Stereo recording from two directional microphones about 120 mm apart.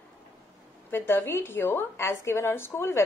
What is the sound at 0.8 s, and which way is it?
A woman's voice, 20° left (ahead or behind).